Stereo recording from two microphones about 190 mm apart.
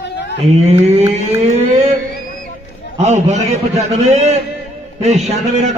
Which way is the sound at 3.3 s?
35° right (ahead or behind).